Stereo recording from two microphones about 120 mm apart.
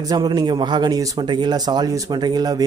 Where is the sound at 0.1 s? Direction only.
35° right (ahead or behind).